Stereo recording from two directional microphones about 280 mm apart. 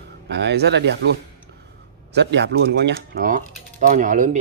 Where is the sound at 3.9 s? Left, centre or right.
Right.